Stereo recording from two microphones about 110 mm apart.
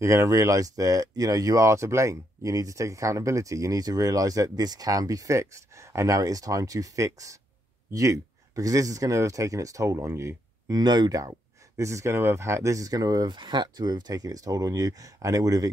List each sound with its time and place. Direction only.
0.0 s speech: 25° right (ahead or behind)
10.8 s speech: 40° right (ahead or behind)